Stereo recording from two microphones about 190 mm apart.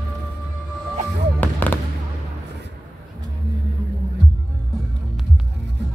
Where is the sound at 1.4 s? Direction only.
10° left (ahead or behind).